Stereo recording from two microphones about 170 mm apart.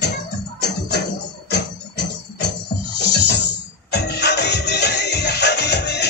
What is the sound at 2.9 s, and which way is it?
Music, 85° left.